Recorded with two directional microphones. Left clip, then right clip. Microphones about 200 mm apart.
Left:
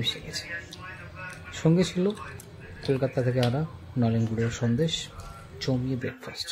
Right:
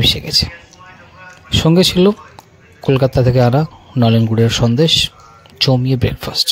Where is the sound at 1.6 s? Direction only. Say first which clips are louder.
Right 13 dB; 45° right (ahead or behind).